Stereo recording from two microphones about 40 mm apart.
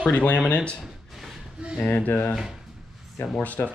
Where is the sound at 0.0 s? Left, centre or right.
Left.